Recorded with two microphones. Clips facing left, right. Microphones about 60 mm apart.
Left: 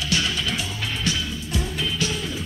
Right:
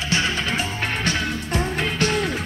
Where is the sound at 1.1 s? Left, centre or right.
Right.